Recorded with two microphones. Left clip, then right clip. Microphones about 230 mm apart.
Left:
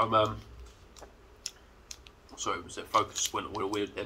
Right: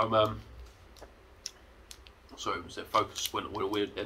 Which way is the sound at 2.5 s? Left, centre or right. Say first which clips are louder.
Left 1 dB; centre.